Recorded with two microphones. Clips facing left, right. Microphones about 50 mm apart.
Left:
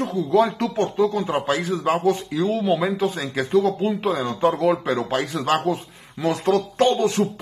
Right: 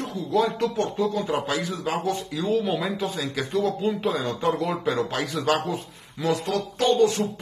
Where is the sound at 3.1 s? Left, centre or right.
Left.